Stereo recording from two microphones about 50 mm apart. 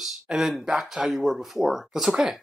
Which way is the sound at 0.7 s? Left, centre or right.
Centre.